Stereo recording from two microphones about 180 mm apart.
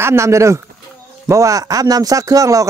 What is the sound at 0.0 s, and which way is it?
Speech, 15° right (ahead or behind).